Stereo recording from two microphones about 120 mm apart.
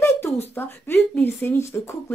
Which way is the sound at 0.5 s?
20° left (ahead or behind).